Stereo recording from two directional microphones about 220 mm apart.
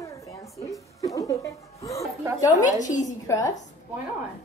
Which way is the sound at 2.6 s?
35° left (ahead or behind).